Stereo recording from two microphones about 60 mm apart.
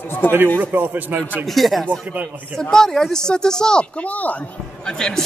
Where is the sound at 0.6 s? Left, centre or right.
Right.